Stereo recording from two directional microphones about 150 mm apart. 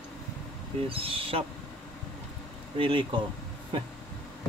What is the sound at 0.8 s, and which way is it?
Speech, 40° right (ahead or behind).